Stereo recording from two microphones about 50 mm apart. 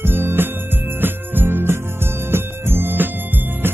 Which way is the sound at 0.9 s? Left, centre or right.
Right.